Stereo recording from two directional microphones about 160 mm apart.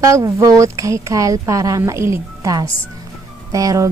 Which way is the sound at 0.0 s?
20° right (ahead or behind).